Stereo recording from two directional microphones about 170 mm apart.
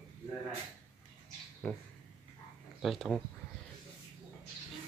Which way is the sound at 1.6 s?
Centre (ahead or behind).